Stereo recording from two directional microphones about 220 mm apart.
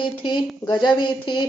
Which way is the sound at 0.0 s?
20° left (ahead or behind).